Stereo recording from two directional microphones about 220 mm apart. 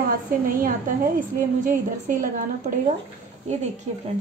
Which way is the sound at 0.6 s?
40° right (ahead or behind).